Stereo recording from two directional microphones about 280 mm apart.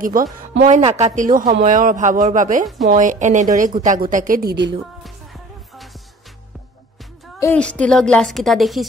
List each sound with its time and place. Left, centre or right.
0.0 s a woman's voice: right
5.0 s music: centre
7.3 s a woman's voice: centre